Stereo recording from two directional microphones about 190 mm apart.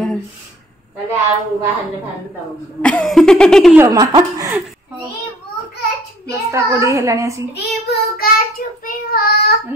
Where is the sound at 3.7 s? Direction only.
15° right (ahead or behind).